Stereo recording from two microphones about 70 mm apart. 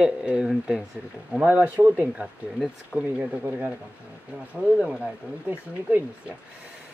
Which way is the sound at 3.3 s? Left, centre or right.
Centre.